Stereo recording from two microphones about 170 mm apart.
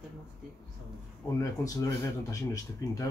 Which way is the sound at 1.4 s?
20° left (ahead or behind).